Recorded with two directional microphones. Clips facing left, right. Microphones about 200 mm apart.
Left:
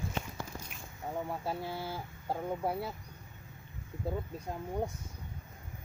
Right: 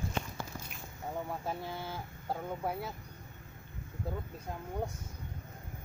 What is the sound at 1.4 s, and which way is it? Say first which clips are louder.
Speech: left 2 dB; 5° left (ahead or behind).